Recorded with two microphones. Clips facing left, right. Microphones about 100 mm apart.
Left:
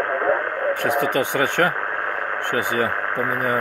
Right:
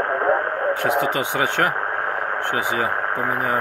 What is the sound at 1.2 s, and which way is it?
Speech, 15° right (ahead or behind).